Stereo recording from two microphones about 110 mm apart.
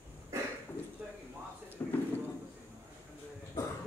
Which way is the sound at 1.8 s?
20° left (ahead or behind).